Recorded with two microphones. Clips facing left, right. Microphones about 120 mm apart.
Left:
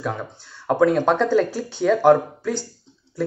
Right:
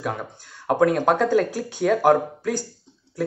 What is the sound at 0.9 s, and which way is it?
Speech, 10° right (ahead or behind).